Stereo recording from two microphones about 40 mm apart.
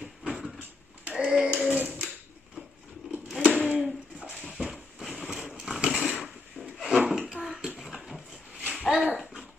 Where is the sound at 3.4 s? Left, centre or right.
Centre.